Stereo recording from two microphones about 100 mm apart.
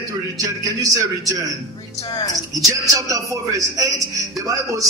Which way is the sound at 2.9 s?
35° right (ahead or behind).